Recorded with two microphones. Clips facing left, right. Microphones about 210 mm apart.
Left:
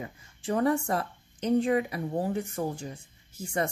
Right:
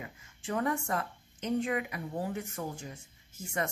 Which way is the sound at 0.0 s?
35° left (ahead or behind).